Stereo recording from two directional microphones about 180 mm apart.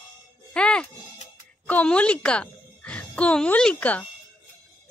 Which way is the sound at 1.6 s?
10° left (ahead or behind).